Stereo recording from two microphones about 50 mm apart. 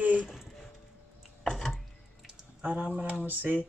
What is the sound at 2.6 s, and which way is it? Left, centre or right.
Speech, right.